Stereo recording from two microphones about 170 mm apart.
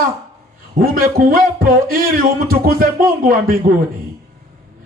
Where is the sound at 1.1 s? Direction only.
60° right (ahead or behind).